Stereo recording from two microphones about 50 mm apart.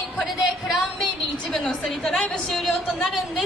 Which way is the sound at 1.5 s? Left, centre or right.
Centre.